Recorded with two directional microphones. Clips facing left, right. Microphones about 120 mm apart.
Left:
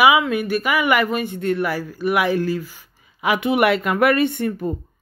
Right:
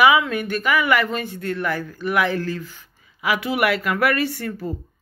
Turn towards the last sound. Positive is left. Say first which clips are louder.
# left 5 dB
turn(degrees=20)  # may be behind; listen again after turning